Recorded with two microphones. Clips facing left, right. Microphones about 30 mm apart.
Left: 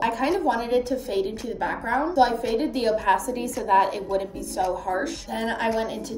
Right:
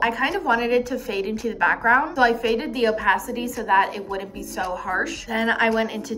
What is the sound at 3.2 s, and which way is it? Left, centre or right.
A woman's voice, right.